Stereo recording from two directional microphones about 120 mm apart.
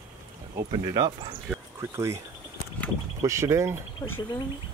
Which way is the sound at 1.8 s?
25° right (ahead or behind).